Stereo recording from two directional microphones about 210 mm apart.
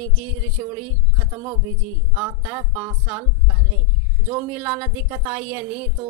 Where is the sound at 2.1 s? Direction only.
10° right (ahead or behind).